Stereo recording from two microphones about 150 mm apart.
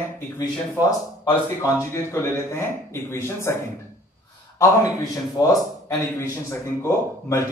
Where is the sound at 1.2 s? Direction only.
20° left (ahead or behind).